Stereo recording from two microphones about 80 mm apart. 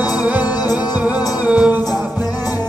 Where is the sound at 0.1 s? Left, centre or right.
Centre.